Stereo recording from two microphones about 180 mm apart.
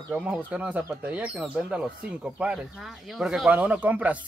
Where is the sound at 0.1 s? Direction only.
5° right (ahead or behind).